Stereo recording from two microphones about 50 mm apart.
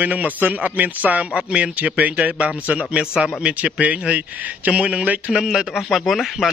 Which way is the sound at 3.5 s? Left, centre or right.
Right.